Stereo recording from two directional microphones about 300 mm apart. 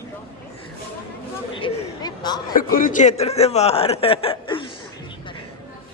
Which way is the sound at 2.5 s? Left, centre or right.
Left.